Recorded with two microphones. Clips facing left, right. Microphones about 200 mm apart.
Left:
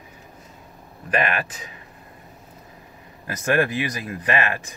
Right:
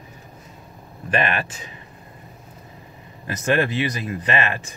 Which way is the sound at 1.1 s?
5° left (ahead or behind).